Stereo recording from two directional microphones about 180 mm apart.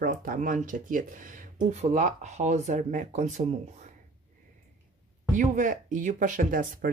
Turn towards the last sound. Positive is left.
turn(degrees=-50)  # may be behind; listen again after turning